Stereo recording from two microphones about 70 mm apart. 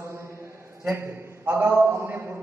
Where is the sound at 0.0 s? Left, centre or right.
Right.